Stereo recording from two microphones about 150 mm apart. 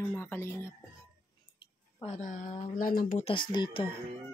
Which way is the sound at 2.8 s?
70° left (ahead or behind).